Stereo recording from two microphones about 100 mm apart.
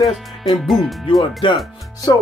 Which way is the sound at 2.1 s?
45° left (ahead or behind).